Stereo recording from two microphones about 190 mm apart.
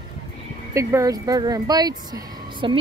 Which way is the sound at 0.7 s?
15° right (ahead or behind).